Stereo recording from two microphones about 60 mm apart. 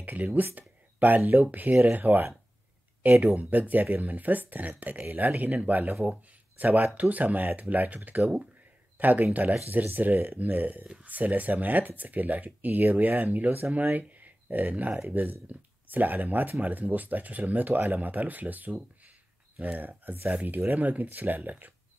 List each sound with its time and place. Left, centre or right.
0.0 s speech: right
7.0 s speech: right